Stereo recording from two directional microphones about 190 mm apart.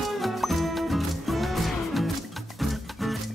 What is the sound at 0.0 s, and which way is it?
Music, centre (ahead or behind).